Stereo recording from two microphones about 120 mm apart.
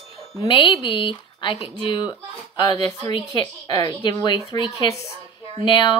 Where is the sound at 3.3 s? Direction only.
35° left (ahead or behind).